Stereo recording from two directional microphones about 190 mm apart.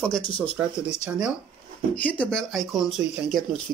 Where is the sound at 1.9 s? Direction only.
5° left (ahead or behind).